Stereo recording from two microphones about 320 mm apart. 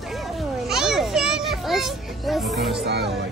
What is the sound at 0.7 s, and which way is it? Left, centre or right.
Children playing, centre.